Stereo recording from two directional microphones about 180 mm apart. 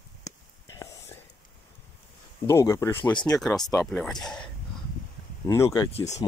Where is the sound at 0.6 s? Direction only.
15° left (ahead or behind).